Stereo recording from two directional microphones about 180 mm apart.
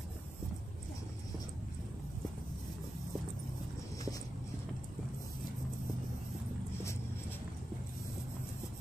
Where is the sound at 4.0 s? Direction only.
20° left (ahead or behind).